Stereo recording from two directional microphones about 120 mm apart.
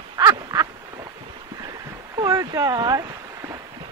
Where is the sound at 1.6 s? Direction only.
35° right (ahead or behind).